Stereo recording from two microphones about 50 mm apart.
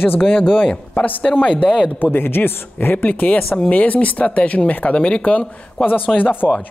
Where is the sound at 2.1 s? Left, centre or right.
Left.